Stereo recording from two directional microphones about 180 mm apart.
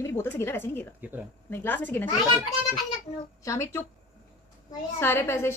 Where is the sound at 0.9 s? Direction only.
10° right (ahead or behind).